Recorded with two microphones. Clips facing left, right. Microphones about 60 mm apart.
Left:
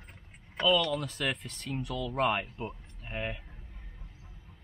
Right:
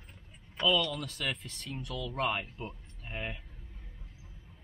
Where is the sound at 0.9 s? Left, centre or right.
Centre.